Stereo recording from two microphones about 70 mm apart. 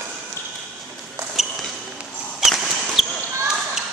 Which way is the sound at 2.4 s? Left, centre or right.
Centre.